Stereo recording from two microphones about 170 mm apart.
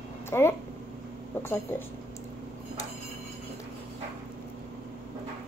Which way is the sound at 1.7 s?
15° left (ahead or behind).